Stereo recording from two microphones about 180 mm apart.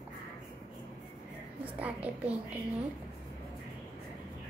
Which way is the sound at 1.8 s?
10° right (ahead or behind).